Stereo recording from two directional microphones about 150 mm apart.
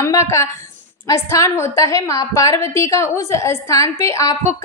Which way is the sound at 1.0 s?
20° left (ahead or behind).